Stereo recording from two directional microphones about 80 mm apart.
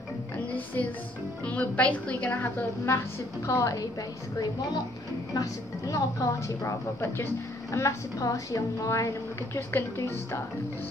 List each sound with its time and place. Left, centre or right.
0.8 s a woman's voice: left
2.4 s a woman's voice: left
5.3 s a woman's voice: left